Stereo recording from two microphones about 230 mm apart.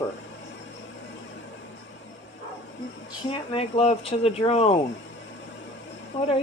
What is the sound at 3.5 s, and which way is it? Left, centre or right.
Speech, left.